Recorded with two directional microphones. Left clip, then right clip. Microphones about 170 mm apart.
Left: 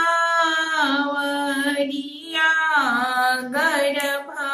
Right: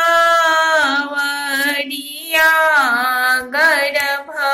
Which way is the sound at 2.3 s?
30° right (ahead or behind).